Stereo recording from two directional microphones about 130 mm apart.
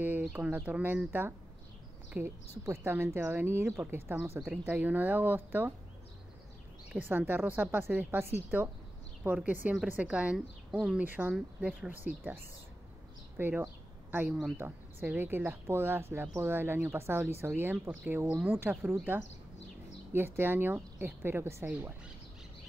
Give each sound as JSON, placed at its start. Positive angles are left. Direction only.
{"t": 0.0, "sound": "speech", "side_deg": -15}
{"t": 6.9, "sound": "speech", "side_deg": -15}
{"t": 13.4, "sound": "speech", "side_deg": -15}
{"t": 20.1, "sound": "speech", "side_deg": -15}